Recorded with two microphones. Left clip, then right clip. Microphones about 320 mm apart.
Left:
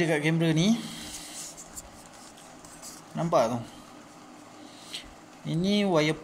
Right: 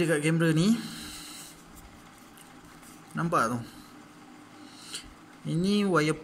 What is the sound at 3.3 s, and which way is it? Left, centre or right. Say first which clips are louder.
Speech: left 3 dB; right.